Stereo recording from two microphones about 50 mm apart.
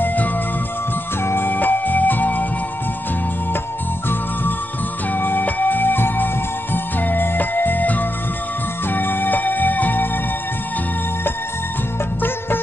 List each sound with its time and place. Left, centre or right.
1.2 s music: left
5.2 s music: left